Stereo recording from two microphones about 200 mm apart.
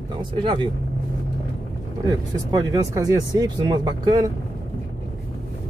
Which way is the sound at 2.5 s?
20° right (ahead or behind).